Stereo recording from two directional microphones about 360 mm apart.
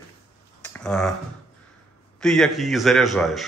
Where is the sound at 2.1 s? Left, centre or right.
Centre.